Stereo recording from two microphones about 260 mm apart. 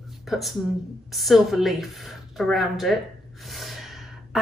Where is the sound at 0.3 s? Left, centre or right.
Centre.